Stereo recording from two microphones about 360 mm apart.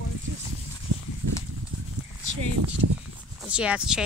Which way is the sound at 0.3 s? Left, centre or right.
Right.